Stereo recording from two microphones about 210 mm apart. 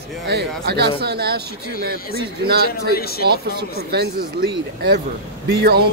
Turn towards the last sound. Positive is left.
turn(degrees=-50)  # may be behind; listen again after turning